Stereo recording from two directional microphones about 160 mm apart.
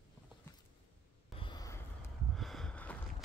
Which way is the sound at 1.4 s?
25° left (ahead or behind).